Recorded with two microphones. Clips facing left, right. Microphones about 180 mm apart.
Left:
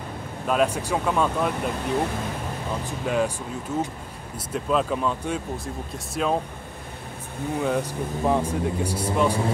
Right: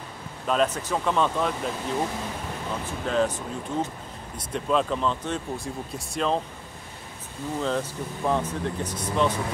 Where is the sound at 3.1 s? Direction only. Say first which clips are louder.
Left 1 dB; 10° left (ahead or behind).